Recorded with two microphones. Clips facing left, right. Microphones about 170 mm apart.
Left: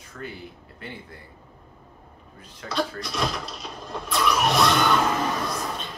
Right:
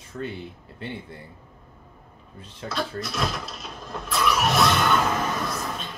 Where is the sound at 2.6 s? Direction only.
Centre (ahead or behind).